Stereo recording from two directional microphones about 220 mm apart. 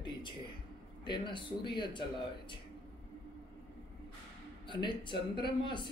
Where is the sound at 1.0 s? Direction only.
20° left (ahead or behind).